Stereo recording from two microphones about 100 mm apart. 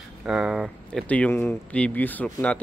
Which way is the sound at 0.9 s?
10° left (ahead or behind).